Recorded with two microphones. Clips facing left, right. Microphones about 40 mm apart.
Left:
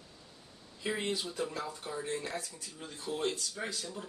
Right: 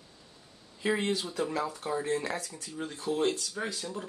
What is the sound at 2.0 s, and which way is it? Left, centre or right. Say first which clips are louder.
Speech: right 6 dB; right.